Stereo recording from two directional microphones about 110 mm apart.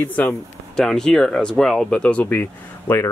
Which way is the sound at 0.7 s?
5° left (ahead or behind).